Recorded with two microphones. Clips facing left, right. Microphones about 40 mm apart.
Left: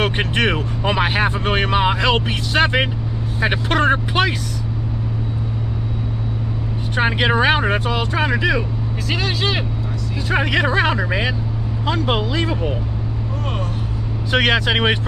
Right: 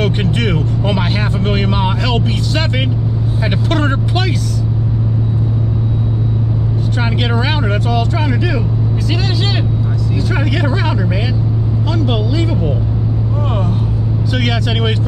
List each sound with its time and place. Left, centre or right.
0.0 s speech: left
0.8 s speech: centre
7.0 s speech: centre
14.3 s speech: left